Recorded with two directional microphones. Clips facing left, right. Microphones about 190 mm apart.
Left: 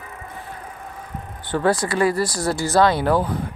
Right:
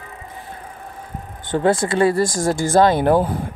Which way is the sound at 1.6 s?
25° right (ahead or behind).